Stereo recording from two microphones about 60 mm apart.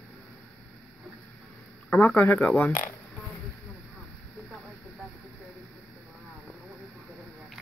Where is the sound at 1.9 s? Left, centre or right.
Left.